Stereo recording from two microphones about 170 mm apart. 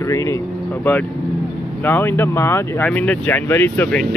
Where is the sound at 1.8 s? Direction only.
10° left (ahead or behind).